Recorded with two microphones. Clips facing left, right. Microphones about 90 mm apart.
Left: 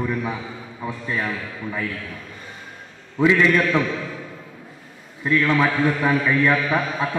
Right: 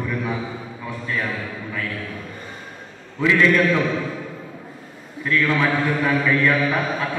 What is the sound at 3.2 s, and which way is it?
Speech, 20° left (ahead or behind).